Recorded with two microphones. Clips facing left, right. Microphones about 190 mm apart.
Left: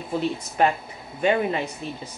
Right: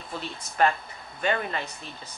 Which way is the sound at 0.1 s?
10° left (ahead or behind).